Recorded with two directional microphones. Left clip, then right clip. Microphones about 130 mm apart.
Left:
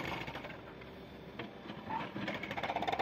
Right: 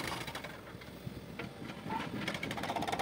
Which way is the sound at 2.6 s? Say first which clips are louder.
Left 2 dB; 5° right (ahead or behind).